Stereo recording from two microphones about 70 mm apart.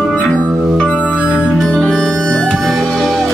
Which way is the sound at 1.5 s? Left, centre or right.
Centre.